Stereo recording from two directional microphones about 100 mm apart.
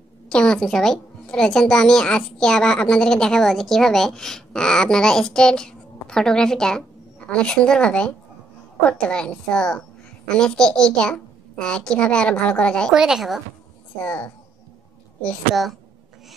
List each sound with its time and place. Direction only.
0.3 s a child's voice: 10° left (ahead or behind)
12.9 s a woman's voice: 5° right (ahead or behind)
14.0 s a child's voice: 15° left (ahead or behind)